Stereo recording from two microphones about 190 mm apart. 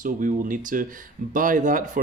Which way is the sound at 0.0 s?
45° right (ahead or behind).